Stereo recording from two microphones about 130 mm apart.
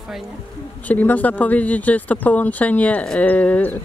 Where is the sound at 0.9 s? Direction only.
15° left (ahead or behind).